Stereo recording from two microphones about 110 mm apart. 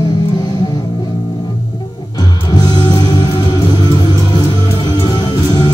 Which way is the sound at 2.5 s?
40° left (ahead or behind).